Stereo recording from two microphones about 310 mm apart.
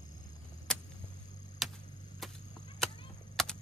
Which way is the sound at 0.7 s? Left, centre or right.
Centre.